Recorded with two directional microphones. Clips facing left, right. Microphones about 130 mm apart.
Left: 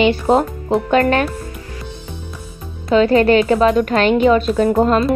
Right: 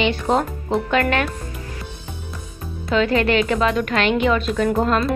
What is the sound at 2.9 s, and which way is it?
A woman's voice, 40° left (ahead or behind).